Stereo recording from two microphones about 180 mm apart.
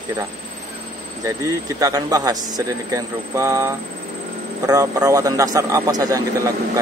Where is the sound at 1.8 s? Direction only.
20° right (ahead or behind).